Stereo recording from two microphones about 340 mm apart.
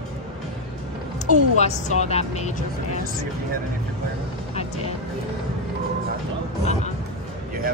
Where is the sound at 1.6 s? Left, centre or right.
Centre.